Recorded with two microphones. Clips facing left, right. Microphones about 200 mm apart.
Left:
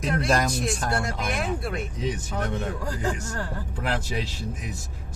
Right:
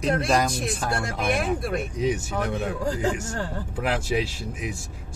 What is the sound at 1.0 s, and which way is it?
Speech, 55° right (ahead or behind).